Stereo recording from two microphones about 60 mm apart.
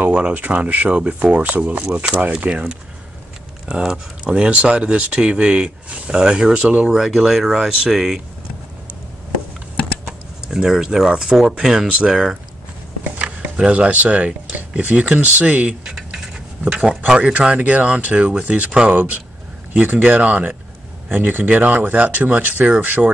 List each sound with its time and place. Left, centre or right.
0.0 s speech: right
6.6 s speech: right
6.9 s speech: centre
10.5 s speech: centre
13.7 s speech: right
15.8 s mechanisms: centre
16.6 s speech: centre
17.2 s speech: right